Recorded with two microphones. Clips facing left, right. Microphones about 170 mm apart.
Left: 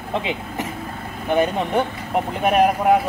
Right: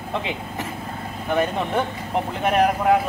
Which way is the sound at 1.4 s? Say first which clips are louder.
Left 3 dB; 10° left (ahead or behind).